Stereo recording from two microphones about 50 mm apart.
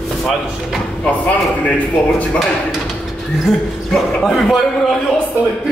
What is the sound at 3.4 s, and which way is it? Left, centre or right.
A man's voice, centre.